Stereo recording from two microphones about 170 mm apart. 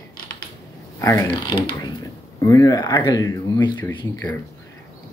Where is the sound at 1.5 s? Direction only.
30° left (ahead or behind).